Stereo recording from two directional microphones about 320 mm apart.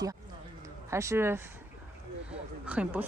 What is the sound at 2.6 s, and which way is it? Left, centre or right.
Speech, centre.